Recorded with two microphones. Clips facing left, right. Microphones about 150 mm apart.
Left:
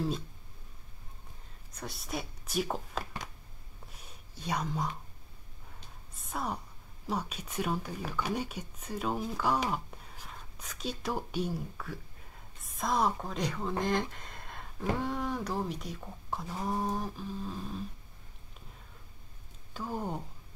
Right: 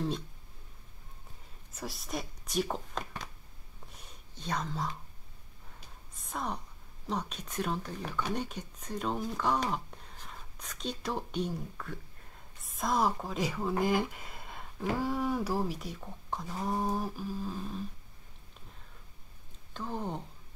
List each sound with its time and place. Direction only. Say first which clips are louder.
1.8 s speech: even; centre (ahead or behind)
3.9 s a sound: left 1 dB; 5° left (ahead or behind)
6.1 s a woman's voice: left 1 dB; 5° left (ahead or behind)
19.7 s speech: left 1 dB; 5° left (ahead or behind)